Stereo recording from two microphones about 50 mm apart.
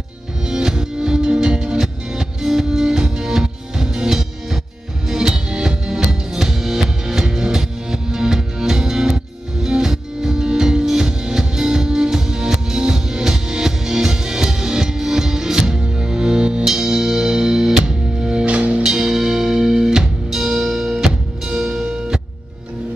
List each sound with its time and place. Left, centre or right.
0.5 s music: centre
18.4 s music: right
18.9 s music: centre